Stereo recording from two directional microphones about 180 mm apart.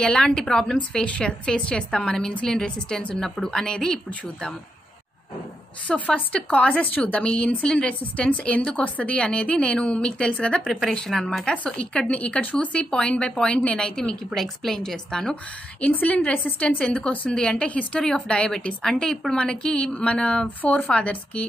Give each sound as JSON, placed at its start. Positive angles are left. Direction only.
{"t": 0.0, "sound": "a woman's voice", "side_deg": 5}
{"t": 5.9, "sound": "a woman's voice", "side_deg": 10}